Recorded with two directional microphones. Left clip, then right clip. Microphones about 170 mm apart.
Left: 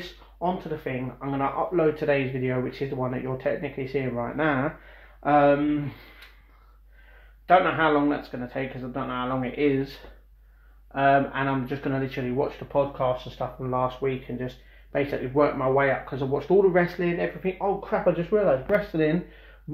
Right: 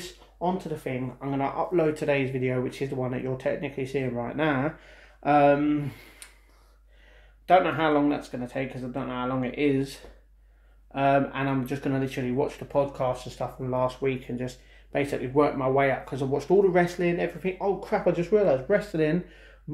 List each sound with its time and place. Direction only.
0.4 s speech: 15° right (ahead or behind)
7.4 s speech: 15° right (ahead or behind)
10.9 s speech: 15° right (ahead or behind)
18.9 s speech: 5° right (ahead or behind)